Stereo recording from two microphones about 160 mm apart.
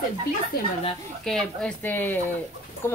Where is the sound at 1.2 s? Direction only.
5° left (ahead or behind).